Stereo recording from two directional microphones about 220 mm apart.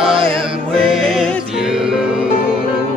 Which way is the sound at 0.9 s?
Centre (ahead or behind).